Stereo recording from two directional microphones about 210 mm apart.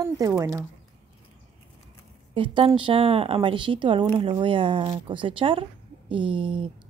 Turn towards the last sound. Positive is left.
turn(degrees=-25)  # may be behind; listen again after turning